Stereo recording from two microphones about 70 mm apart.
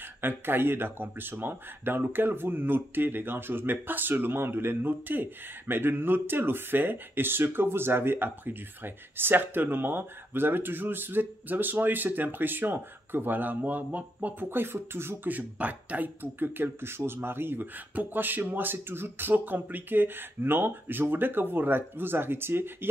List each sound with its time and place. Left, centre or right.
0.2 s speech: right